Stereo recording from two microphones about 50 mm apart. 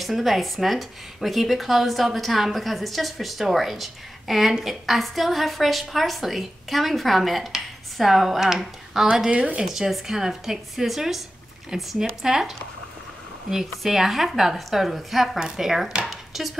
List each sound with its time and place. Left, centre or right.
0.0 s speech: centre
9.3 s speech: right
9.7 s a woman's voice: centre
13.7 s a woman's voice: centre
16.1 s a sound: centre